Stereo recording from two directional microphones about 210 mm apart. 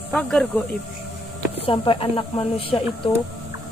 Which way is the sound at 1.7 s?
25° left (ahead or behind).